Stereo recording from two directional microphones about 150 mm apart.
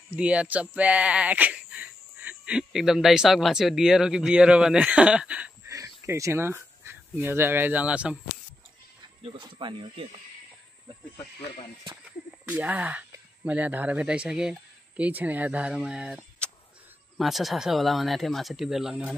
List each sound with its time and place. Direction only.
0.1 s speech: 10° right (ahead or behind)
5.7 s speech: 20° right (ahead or behind)
9.2 s speech: 30° right (ahead or behind)
12.4 s speech: 10° right (ahead or behind)